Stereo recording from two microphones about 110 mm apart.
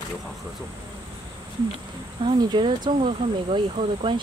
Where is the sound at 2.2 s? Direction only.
45° right (ahead or behind).